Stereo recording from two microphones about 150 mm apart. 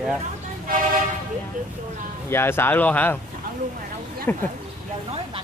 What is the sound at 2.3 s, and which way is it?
Speech, 15° left (ahead or behind).